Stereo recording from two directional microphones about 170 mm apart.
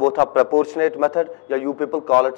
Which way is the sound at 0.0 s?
25° left (ahead or behind).